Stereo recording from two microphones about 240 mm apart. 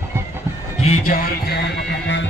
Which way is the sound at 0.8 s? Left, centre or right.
Left.